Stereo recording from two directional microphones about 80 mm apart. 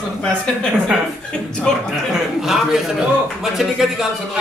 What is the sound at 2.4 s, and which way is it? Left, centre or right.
A man's voice, centre.